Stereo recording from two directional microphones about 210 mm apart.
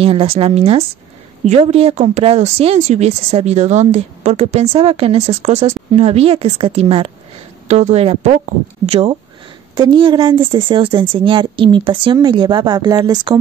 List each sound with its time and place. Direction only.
0.0 s speech: 25° right (ahead or behind)